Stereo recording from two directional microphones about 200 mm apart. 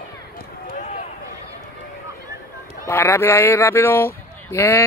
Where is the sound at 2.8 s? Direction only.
10° left (ahead or behind).